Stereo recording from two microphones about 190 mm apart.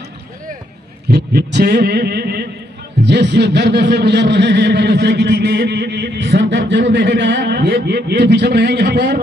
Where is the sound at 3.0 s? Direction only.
65° right (ahead or behind).